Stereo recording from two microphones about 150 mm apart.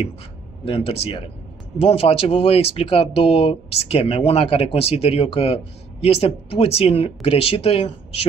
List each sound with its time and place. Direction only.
0.7 s speech: 40° left (ahead or behind)